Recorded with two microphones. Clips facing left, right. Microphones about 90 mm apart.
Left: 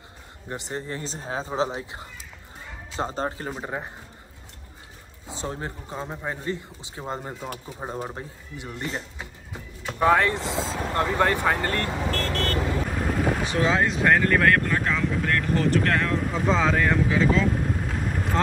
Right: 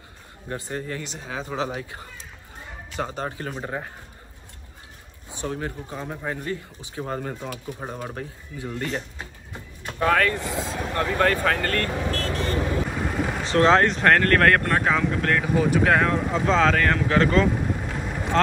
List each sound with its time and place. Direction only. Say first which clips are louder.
0.5 s speech: right 1 dB; 20° left (ahead or behind)
3.5 s speech: right 1 dB; 5° left (ahead or behind)
5.3 s speech: right 2 dB; 30° left (ahead or behind)
12.1 s vehicle: even; centre (ahead or behind)
13.4 s speech: right 9 dB; 10° left (ahead or behind)
16.4 s speech: right 2 dB; 10° left (ahead or behind)